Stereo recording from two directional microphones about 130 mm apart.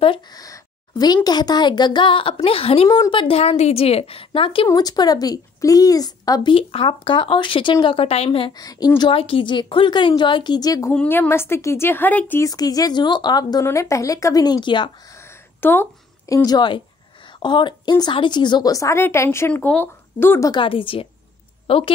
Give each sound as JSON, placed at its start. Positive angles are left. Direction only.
{"t": 0.3, "sound": "a woman's voice", "side_deg": 30}
{"t": 2.9, "sound": "a woman's voice", "side_deg": 40}
{"t": 4.6, "sound": "speech", "side_deg": 30}
{"t": 6.5, "sound": "a woman's voice", "side_deg": 45}
{"t": 8.5, "sound": "a woman's voice", "side_deg": 30}
{"t": 10.9, "sound": "a woman's voice", "side_deg": 15}
{"t": 12.4, "sound": "speech", "side_deg": 30}
{"t": 15.0, "sound": "a sound", "side_deg": 20}
{"t": 16.4, "sound": "a woman's voice", "side_deg": 35}
{"t": 20.4, "sound": "a woman's voice", "side_deg": 40}